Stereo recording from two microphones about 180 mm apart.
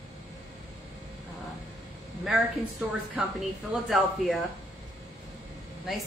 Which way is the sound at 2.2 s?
5° right (ahead or behind).